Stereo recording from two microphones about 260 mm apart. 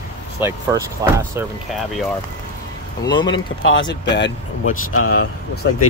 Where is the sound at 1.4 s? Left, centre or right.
Centre.